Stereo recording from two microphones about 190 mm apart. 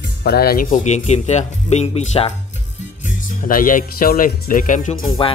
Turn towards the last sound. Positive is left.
turn(degrees=45)  # may be behind; listen again after turning